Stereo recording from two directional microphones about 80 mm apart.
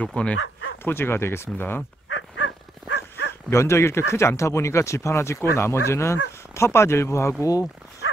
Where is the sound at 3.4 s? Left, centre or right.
Left.